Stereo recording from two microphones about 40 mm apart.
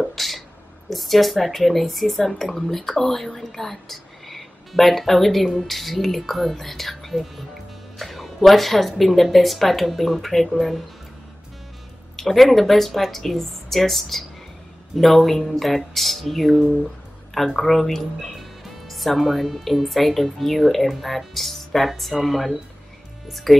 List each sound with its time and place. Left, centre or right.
0.0 s a sound: centre
0.8 s a woman's voice: centre
12.2 s speech: centre